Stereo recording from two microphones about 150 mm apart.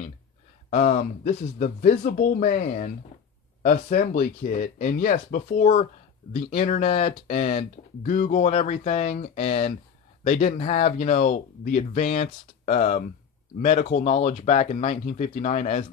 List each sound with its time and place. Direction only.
0.7 s speech: 55° left (ahead or behind); by 2.6 s 80° left
2.6 s speech: 55° left (ahead or behind)
3.6 s speech: 65° left (ahead or behind)
5.6 s speech: 45° left (ahead or behind)
9.2 s speech: 75° left (ahead or behind)
9.5 s speech: 50° left (ahead or behind)